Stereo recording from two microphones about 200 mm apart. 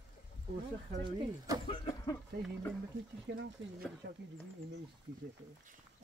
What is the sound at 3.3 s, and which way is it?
Speech, 60° right (ahead or behind).